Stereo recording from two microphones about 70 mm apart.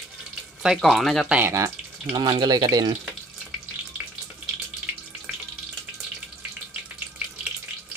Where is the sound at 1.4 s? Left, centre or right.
Right.